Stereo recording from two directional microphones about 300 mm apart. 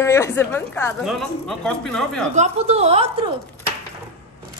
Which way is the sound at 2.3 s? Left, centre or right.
Right.